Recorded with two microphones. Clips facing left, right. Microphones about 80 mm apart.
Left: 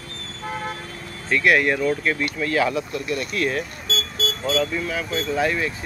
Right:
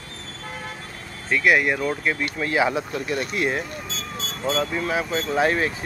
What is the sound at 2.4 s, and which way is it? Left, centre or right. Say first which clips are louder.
Speech: right 1 dB; right.